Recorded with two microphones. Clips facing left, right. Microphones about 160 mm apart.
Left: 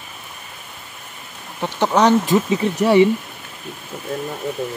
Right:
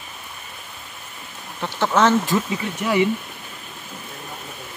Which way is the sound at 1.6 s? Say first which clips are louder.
Left 2 dB; 15° left (ahead or behind).